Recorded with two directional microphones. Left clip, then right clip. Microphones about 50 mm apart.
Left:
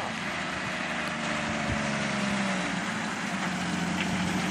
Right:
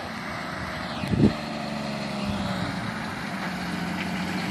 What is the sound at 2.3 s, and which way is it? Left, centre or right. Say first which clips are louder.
Vehicle: left 1 dB; centre.